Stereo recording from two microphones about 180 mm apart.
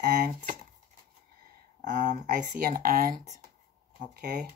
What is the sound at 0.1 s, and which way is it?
Speech, 55° right (ahead or behind).